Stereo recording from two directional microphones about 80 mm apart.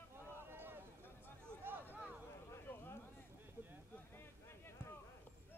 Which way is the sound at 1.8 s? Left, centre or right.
Left.